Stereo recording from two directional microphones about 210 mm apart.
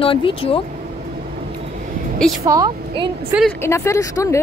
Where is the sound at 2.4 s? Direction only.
15° right (ahead or behind).